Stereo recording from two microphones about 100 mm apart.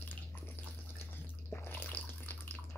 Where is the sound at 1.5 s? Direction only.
20° left (ahead or behind).